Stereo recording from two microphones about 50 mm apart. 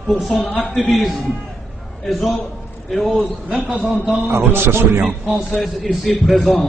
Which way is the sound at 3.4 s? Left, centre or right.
Right.